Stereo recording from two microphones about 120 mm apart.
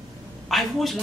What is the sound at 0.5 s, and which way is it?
Speech, centre (ahead or behind).